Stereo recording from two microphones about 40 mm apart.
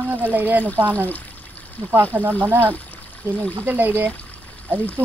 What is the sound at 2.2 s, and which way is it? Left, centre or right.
Speech, right.